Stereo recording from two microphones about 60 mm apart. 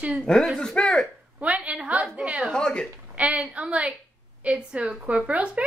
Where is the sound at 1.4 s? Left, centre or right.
Right.